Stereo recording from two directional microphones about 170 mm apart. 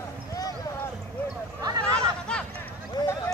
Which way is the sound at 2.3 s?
5° left (ahead or behind).